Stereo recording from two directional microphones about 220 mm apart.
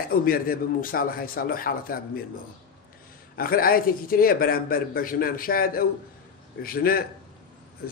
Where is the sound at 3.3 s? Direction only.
40° left (ahead or behind).